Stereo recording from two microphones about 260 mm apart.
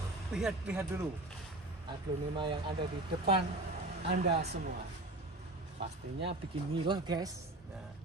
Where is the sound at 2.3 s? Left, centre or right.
Centre.